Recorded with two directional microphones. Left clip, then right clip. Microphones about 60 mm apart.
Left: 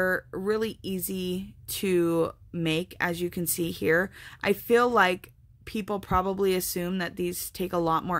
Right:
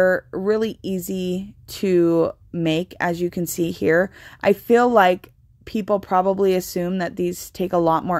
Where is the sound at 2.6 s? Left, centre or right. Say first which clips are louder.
Right 6 dB; right.